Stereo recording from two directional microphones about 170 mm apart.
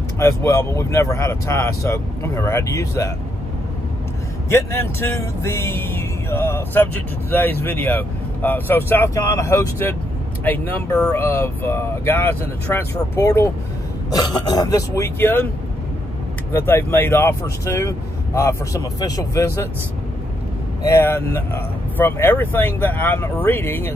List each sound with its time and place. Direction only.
0.2 s speech: 15° left (ahead or behind)
4.5 s speech: 15° left (ahead or behind)
16.5 s speech: 10° left (ahead or behind)
20.8 s speech: 15° left (ahead or behind)